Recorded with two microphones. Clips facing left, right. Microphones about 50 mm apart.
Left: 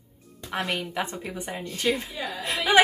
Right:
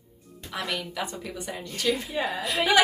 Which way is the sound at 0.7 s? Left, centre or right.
Left.